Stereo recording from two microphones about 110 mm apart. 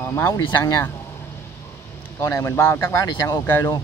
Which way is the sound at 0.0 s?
25° left (ahead or behind).